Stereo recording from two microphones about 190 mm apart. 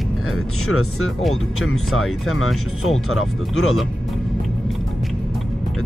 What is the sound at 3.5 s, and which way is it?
Speech, 90° left.